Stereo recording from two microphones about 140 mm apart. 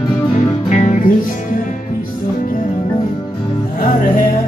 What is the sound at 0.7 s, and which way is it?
Music, 60° left (ahead or behind).